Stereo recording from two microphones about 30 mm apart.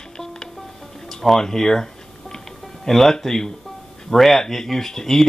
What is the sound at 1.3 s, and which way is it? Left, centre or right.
Speech, centre.